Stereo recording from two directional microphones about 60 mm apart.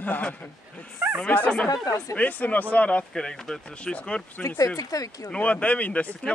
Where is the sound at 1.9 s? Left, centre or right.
Left.